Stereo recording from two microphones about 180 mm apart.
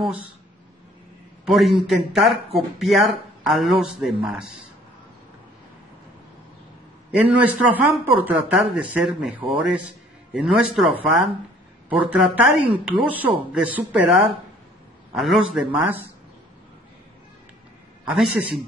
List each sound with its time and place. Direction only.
1.4 s speech: centre (ahead or behind)
7.1 s a man's voice: 10° right (ahead or behind)
18.0 s a man's voice: centre (ahead or behind)